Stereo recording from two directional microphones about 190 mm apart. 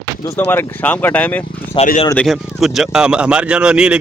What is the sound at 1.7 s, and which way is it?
Speech, 25° left (ahead or behind).